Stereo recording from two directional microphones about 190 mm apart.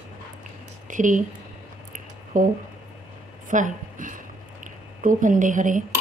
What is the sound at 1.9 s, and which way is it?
Squish, 45° right (ahead or behind).